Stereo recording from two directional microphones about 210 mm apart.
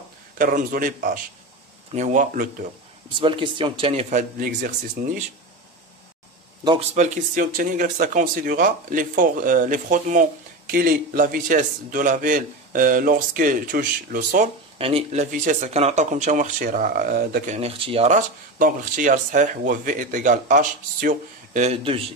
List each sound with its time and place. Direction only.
0.4 s speech: 40° right (ahead or behind)
3.1 s speech: 25° right (ahead or behind)
6.6 s speech: 20° right (ahead or behind)
7.0 s speech: 40° right (ahead or behind)
14.8 s speech: 25° right (ahead or behind); by 17.6 s 45° right (ahead or behind)
17.6 s speech: 25° right (ahead or behind)